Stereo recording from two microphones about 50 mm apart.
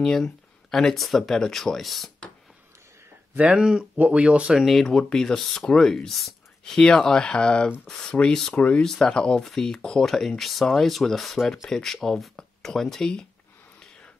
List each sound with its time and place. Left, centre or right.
0.0 s speech: centre
3.3 s speech: centre
3.9 s speech: right
4.6 s speech: centre
6.6 s speech: centre
8.8 s speech: centre